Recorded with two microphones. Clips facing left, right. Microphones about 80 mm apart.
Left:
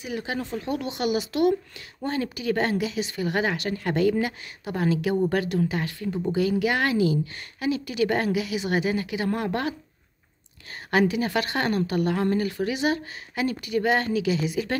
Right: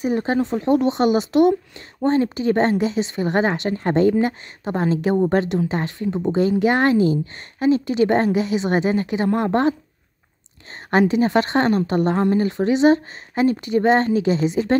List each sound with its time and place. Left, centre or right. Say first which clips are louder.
0.0 s a woman's voice: right 10 dB; right
0.4 s a woman's voice: right 11 dB; right
10.9 s a woman's voice: right 6 dB; right